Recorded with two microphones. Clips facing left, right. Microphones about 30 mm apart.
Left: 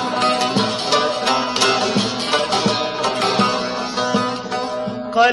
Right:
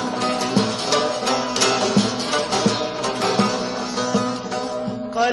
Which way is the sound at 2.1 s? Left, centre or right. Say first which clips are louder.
Left 3 dB; left.